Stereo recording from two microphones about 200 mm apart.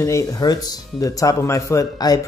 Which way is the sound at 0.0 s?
15° left (ahead or behind).